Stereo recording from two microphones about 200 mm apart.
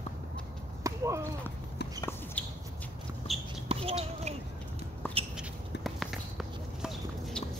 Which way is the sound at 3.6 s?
30° right (ahead or behind).